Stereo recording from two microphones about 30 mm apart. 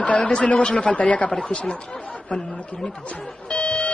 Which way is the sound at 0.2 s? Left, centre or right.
Left.